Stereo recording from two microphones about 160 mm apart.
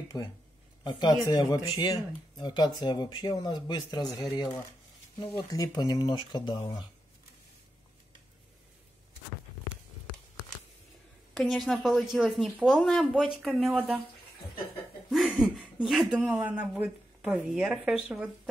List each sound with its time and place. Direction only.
0.1 s speech: 25° left (ahead or behind)
11.3 s speech: centre (ahead or behind)
15.0 s speech: centre (ahead or behind)